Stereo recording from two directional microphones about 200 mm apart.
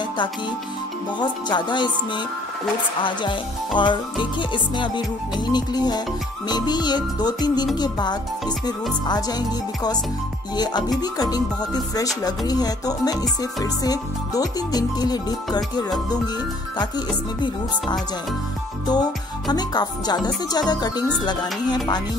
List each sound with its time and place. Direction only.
1.2 s music: 20° left (ahead or behind)
10.5 s music: 20° left (ahead or behind)
18.9 s music: 20° left (ahead or behind)